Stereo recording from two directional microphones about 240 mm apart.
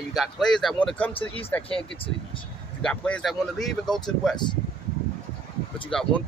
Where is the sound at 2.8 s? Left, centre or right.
Centre.